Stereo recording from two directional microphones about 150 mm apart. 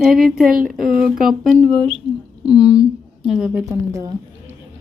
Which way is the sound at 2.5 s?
25° left (ahead or behind).